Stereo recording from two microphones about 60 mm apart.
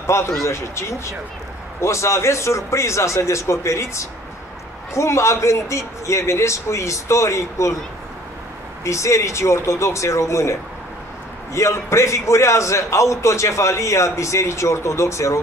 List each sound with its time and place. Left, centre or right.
0.0 s a man's voice: left
8.8 s a man's voice: left